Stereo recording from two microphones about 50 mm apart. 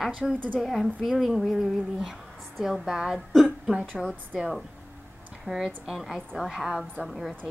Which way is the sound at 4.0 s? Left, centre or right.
Centre.